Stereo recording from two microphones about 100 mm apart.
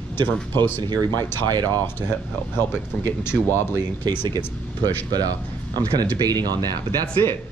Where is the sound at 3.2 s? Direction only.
25° left (ahead or behind).